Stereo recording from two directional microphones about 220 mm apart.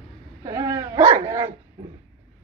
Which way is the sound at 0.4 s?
15° right (ahead or behind).